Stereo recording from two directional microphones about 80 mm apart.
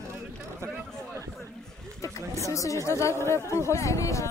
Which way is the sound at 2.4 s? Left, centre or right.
Left.